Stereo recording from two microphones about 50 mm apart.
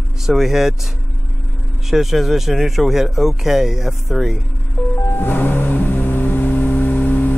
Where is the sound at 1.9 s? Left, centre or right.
Centre.